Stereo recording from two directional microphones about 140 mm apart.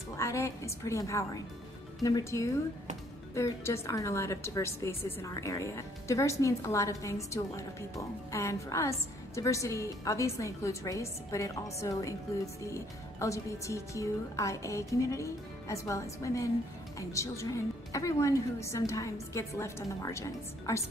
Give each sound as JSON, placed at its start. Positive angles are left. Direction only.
{"t": 0.2, "sound": "a woman's voice", "side_deg": 20}
{"t": 13.2, "sound": "a woman's voice", "side_deg": 20}